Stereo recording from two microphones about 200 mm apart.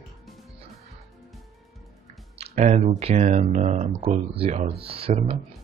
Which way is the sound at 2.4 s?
35° right (ahead or behind).